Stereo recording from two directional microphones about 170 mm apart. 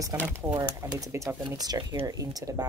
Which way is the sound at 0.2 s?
10° right (ahead or behind).